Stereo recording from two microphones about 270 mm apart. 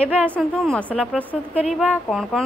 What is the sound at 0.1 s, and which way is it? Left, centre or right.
A woman's voice, centre.